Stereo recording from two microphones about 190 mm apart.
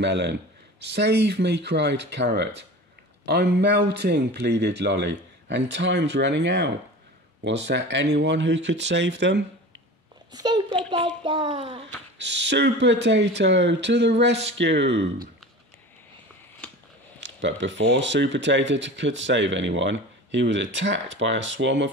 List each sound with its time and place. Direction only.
0.0 s speech: 65° right (ahead or behind)
10.3 s a child's voice: 20° right (ahead or behind)
12.2 s speech: 65° right (ahead or behind)
17.2 s speech: 70° right (ahead or behind)